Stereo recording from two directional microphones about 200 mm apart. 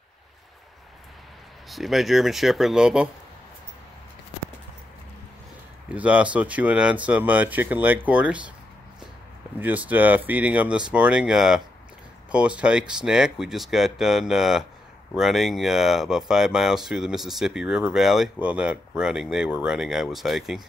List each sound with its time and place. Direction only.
1.7 s speech: centre (ahead or behind)
5.9 s speech: 5° right (ahead or behind)
9.6 s speech: 10° right (ahead or behind)